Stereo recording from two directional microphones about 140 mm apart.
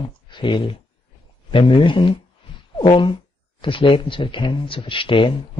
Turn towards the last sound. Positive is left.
turn(degrees=40)  # may be behind; listen again after turning